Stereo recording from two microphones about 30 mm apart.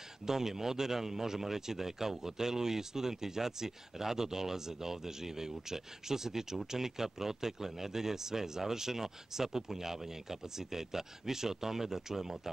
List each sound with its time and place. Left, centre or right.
0.3 s speech: centre